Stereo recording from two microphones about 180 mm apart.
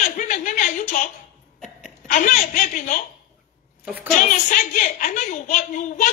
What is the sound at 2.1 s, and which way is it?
Chuckle, 45° left (ahead or behind).